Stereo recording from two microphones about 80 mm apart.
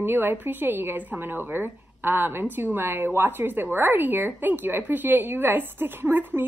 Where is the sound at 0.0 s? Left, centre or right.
Right.